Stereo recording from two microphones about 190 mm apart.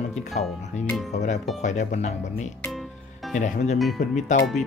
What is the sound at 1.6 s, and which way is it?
Speech, 40° left (ahead or behind).